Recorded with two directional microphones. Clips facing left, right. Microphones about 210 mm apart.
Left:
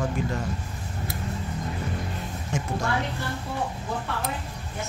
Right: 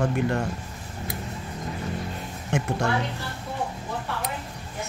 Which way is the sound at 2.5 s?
65° right (ahead or behind).